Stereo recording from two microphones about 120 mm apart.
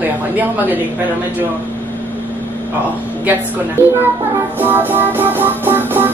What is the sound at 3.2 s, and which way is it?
Speech, 20° right (ahead or behind).